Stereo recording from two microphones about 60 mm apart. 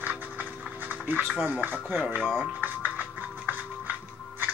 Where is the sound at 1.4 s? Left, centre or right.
Right.